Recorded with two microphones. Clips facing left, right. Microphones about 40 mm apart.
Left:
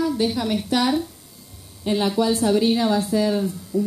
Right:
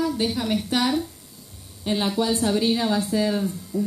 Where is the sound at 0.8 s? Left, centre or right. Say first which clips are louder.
Left 2 dB; centre.